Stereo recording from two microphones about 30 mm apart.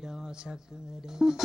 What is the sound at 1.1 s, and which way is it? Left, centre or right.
Speech, centre.